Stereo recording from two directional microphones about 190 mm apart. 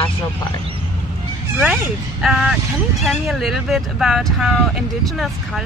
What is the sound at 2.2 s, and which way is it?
Speech, centre (ahead or behind).